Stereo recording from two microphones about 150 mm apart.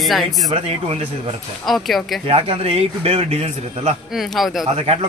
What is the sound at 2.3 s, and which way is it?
A man's voice, 40° right (ahead or behind).